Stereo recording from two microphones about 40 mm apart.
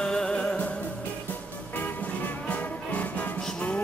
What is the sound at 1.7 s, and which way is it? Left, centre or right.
Music, left.